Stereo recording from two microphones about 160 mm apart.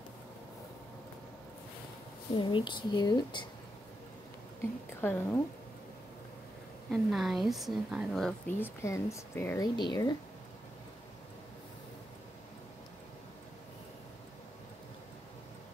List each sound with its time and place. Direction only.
2.3 s speech: 30° left (ahead or behind)
5.0 s a woman's voice: 10° left (ahead or behind)
6.9 s speech: centre (ahead or behind)
9.6 s speech: 25° left (ahead or behind)